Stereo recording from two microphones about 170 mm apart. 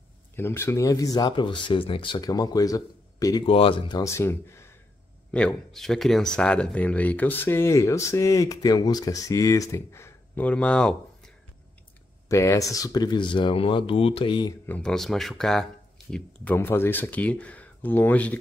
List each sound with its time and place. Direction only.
0.4 s speech: 15° left (ahead or behind)
3.4 s speech: 35° left (ahead or behind)
4.0 s speech: 15° left (ahead or behind)
5.3 s speech: 5° left (ahead or behind)
12.3 s speech: 15° left (ahead or behind)
14.7 s speech: 5° left (ahead or behind)